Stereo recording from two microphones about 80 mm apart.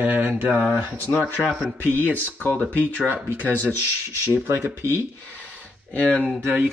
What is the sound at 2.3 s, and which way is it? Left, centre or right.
Speech, centre.